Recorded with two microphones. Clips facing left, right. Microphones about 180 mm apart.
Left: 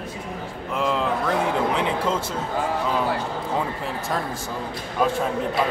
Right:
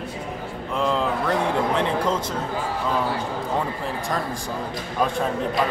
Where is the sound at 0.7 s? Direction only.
5° left (ahead or behind).